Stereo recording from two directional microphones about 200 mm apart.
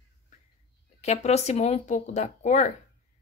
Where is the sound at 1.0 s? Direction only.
35° left (ahead or behind).